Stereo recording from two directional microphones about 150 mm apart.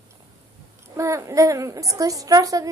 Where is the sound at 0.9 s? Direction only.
20° right (ahead or behind).